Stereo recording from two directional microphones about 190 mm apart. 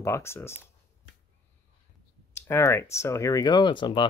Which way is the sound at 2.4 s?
15° left (ahead or behind).